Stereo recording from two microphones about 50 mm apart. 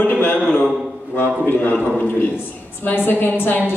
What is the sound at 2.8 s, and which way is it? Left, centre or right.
Speech, left.